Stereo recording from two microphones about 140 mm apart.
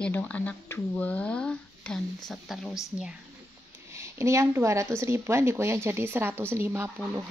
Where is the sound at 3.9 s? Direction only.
20° right (ahead or behind).